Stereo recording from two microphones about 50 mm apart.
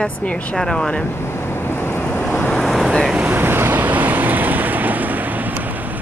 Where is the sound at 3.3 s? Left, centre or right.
Right.